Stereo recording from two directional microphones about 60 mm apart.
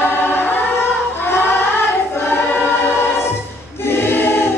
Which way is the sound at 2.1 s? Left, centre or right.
Left.